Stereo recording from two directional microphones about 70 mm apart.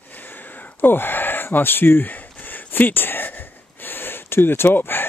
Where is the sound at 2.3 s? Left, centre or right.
Left.